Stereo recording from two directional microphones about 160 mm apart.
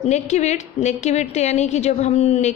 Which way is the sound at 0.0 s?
45° left (ahead or behind).